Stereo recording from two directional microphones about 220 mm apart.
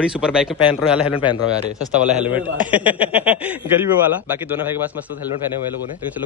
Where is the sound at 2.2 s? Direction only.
5° right (ahead or behind).